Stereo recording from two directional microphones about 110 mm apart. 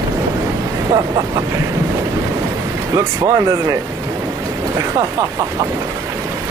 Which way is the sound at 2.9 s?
30° right (ahead or behind).